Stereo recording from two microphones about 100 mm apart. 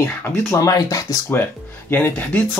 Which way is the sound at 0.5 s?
35° left (ahead or behind).